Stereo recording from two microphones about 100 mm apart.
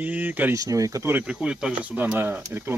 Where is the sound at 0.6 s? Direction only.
35° right (ahead or behind).